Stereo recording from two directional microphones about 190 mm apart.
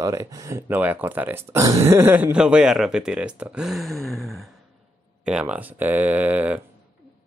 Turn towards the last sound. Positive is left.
turn(degrees=-10)  # may be behind; listen again after turning